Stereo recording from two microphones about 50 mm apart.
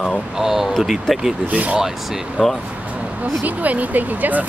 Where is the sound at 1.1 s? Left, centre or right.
Centre.